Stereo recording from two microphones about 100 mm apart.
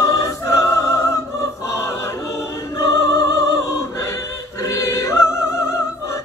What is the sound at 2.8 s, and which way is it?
Music, 30° left (ahead or behind).